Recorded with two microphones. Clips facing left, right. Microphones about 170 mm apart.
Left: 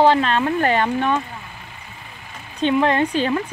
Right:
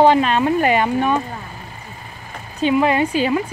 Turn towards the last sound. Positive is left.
turn(degrees=-10)  # may be behind; listen again after turning